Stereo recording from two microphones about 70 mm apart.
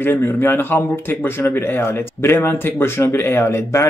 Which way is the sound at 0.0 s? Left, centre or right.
Left.